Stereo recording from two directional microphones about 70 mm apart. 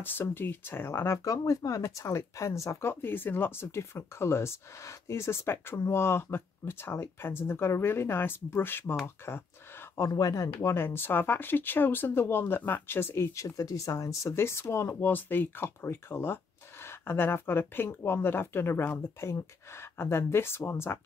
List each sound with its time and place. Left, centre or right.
0.0 s speech: left
9.9 s speech: left